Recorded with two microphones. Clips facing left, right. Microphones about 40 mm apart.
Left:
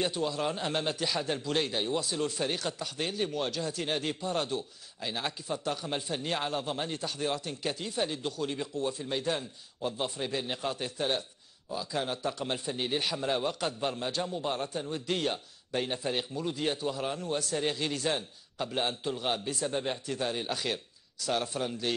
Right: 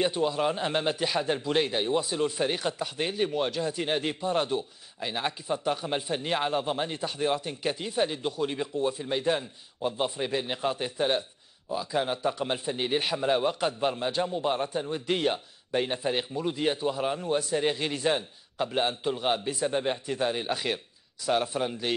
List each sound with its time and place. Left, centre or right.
0.0 s a man's voice: centre